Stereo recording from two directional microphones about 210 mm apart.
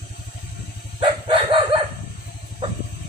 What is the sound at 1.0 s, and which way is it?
Chicken, 25° right (ahead or behind).